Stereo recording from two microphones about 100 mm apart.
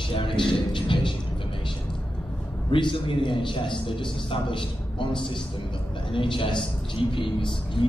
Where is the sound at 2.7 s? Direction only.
55° left (ahead or behind).